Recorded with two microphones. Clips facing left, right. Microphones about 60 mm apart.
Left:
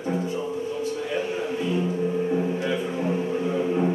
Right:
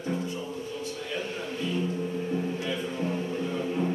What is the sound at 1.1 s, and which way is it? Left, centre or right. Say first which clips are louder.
Music: left 7 dB; centre.